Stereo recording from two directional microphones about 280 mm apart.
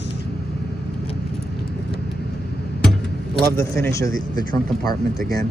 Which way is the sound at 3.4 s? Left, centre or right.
Centre.